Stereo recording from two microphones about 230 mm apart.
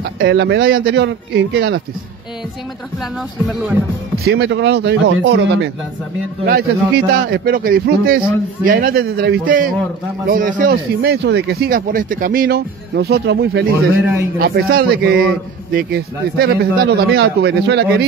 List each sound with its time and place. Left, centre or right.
0.0 s speech: right
3.0 s speech: centre
4.2 s a man's voice: right
13.9 s a man's voice: centre
14.4 s a man's voice: right